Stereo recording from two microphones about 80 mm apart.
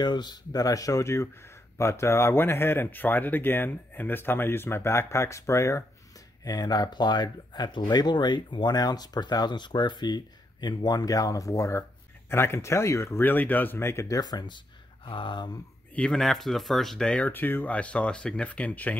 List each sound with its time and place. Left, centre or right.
0.0 s speech: left
6.4 s speech: left
12.3 s speech: left
13.2 s speech: left
14.2 s speech: left
15.0 s speech: left
15.9 s speech: centre
17.3 s speech: left